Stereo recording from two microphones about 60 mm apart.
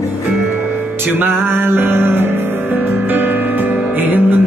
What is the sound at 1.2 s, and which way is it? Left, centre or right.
Music, right.